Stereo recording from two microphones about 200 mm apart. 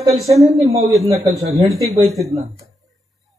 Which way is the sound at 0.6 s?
30° right (ahead or behind).